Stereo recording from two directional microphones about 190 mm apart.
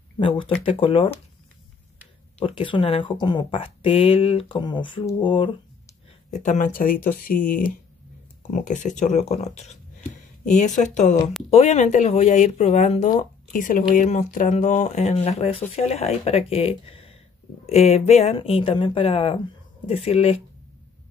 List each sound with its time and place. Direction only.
0.2 s speech: 30° left (ahead or behind)
2.4 s speech: 25° left (ahead or behind)
6.4 s speech: 40° left (ahead or behind)